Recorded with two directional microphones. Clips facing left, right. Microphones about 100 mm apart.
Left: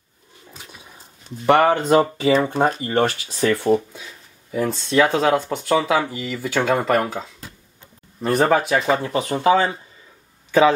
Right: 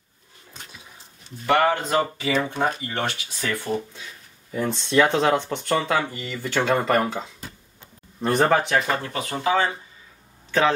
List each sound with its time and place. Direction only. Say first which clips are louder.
0.6 s roaring cats: even; 5° left (ahead or behind)
1.4 s speech: left 4 dB; 25° left (ahead or behind); by 3.1 s 45° left (ahead or behind)
3.3 s speech: left 9 dB; 30° left (ahead or behind)
4.5 s speech: left 3 dB; 5° left (ahead or behind); by 9.4 s 20° left (ahead or behind)
9.4 s speech: left 5 dB; 30° left (ahead or behind)